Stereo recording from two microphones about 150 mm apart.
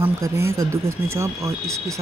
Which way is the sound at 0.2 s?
20° right (ahead or behind).